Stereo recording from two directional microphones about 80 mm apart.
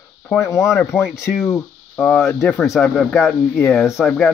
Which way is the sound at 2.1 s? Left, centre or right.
Left.